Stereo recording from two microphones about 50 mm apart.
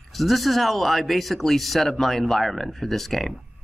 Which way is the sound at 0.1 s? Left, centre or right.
Centre.